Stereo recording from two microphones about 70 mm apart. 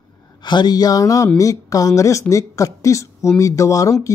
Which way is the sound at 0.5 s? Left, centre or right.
Left.